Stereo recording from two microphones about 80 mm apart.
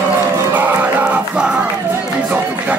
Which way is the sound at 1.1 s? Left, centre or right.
Centre.